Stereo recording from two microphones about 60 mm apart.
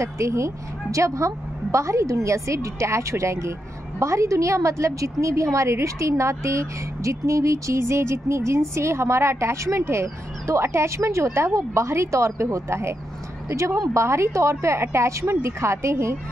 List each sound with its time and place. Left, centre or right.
0.0 s a woman's voice: right